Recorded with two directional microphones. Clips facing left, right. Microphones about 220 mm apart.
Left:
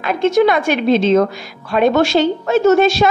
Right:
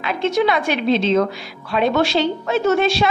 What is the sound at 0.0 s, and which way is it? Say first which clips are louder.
A woman's voice: left 5 dB; 45° left (ahead or behind).